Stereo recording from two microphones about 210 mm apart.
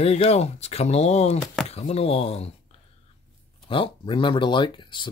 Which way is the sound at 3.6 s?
25° left (ahead or behind).